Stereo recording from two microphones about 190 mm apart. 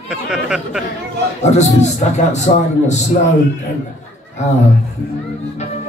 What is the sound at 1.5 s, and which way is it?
A man's voice, 35° left (ahead or behind).